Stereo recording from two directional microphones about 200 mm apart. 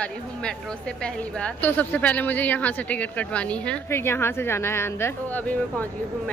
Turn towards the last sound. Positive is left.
turn(degrees=10)  # may be behind; listen again after turning